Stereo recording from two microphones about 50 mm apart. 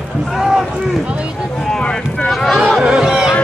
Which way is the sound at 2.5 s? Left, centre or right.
Centre.